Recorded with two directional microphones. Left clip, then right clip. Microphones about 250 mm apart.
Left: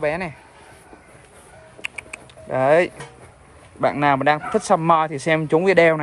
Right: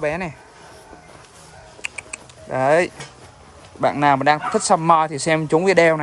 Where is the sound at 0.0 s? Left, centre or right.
Centre.